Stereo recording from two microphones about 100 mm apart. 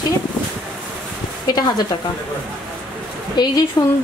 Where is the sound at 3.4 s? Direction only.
40° left (ahead or behind).